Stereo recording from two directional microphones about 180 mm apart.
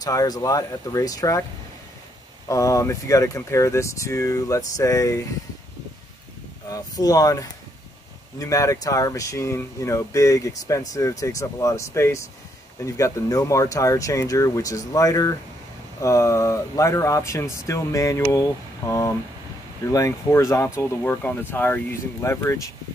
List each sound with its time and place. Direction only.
0.0 s speech: 20° left (ahead or behind)
2.4 s speech: 15° left (ahead or behind)
6.7 s speech: 20° left (ahead or behind)